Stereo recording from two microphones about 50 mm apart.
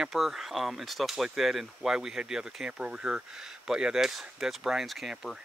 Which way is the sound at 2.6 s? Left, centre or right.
Right.